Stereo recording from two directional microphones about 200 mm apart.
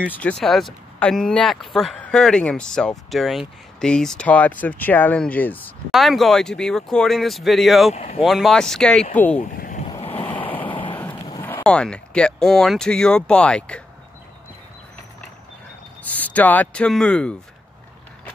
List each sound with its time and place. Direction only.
0.2 s speech: 5° left (ahead or behind)
7.9 s speech: 35° left (ahead or behind)
8.2 s speech: centre (ahead or behind)
9.6 s vehicle: 40° left (ahead or behind)
9.8 s a sound: 25° left (ahead or behind)
11.4 s speech: 5° left (ahead or behind)
16.0 s speech: 10° left (ahead or behind)